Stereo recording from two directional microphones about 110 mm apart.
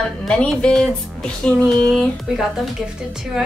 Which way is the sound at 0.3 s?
10° left (ahead or behind).